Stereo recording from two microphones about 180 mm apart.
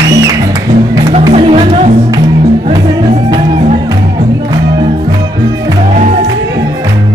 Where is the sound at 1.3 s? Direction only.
35° right (ahead or behind).